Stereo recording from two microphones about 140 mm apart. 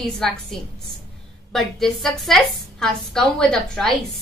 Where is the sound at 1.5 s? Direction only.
Centre (ahead or behind).